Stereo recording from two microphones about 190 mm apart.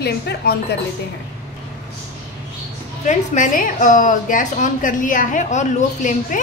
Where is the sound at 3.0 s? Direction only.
40° left (ahead or behind).